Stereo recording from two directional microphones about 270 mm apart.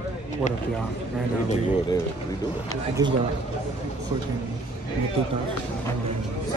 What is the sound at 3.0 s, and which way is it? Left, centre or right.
Speech, centre.